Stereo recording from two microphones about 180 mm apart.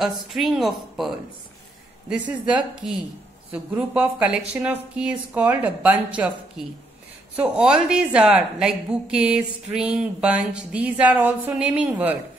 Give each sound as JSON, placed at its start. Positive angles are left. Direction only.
{"t": 0.0, "sound": "a woman's voice", "side_deg": 0}